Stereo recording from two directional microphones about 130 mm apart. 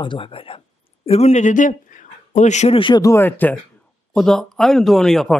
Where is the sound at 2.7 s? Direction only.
40° left (ahead or behind).